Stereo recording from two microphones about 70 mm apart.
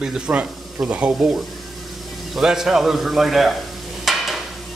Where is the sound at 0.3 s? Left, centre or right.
Centre.